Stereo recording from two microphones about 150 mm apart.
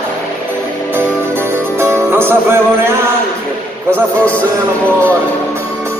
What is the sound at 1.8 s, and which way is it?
Music, 15° right (ahead or behind).